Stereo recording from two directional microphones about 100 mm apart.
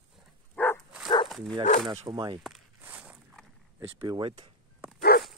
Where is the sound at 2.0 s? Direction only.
45° right (ahead or behind).